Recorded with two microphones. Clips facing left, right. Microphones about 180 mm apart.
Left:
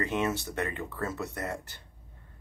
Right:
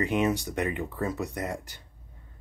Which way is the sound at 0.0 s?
15° right (ahead or behind).